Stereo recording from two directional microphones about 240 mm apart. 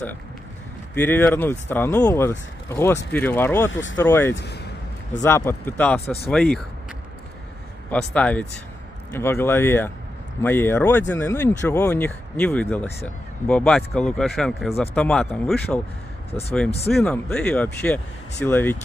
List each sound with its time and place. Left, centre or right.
0.9 s speech: centre
4.4 s speech: left
5.2 s speech: centre
7.9 s speech: centre
16.3 s speech: left
16.9 s speech: centre